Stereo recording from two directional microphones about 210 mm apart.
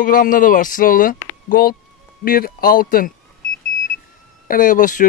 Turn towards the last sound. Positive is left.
turn(degrees=40)  # may be behind; listen again after turning